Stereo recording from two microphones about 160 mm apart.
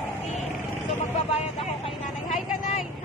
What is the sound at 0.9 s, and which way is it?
Vehicle, 40° left (ahead or behind).